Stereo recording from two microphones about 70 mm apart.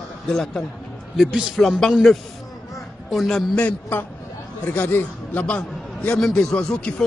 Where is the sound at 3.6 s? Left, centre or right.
Left.